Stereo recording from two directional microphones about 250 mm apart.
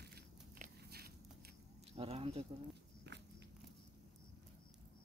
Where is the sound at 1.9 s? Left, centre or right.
Right.